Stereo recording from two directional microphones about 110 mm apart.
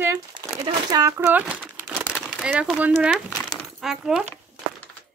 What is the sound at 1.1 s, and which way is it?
Crumpling, 15° right (ahead or behind).